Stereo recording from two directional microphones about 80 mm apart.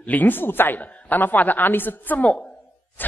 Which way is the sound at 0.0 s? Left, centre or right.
Left.